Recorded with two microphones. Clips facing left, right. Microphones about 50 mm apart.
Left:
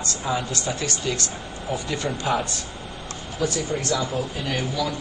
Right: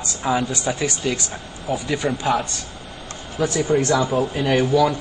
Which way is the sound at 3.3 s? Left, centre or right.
Right.